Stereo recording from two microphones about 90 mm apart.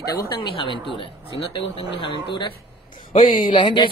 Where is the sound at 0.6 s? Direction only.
70° left (ahead or behind).